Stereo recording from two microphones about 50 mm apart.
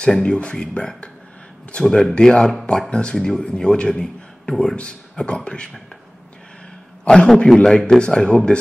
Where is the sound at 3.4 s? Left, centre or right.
Centre.